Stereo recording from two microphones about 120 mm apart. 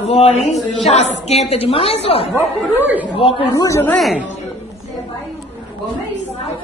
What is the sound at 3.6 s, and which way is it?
Speech, 25° left (ahead or behind).